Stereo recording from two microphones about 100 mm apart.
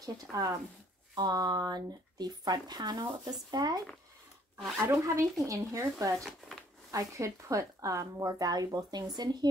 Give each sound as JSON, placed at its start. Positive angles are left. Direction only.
{"t": 0.0, "sound": "speech", "side_deg": -35}
{"t": 4.7, "sound": "speech", "side_deg": -25}
{"t": 6.1, "sound": "speech", "side_deg": 5}
{"t": 6.9, "sound": "speech", "side_deg": -35}